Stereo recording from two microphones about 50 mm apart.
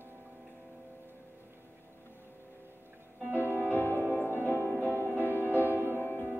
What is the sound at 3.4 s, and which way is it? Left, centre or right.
Music, right.